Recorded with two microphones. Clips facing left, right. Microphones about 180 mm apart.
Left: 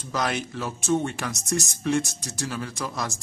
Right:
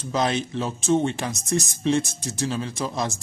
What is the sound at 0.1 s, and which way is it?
Speech, 25° right (ahead or behind).